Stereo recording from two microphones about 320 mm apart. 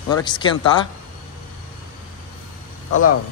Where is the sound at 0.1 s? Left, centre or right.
Centre.